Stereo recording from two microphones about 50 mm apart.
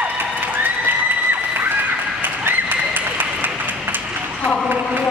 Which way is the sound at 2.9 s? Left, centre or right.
Right.